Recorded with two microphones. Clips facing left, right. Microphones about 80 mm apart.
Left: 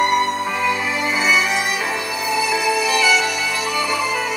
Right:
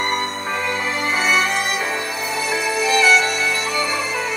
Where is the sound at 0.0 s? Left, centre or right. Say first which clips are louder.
Left 5 dB; right.